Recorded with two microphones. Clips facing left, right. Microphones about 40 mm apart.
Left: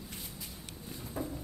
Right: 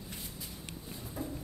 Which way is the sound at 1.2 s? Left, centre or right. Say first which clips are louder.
Left 2 dB; left.